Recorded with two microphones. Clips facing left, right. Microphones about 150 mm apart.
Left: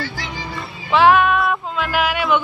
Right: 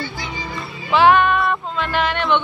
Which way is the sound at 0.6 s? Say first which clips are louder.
Even; centre (ahead or behind).